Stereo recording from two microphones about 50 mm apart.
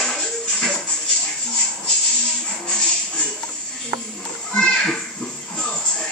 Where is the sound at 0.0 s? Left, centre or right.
Centre.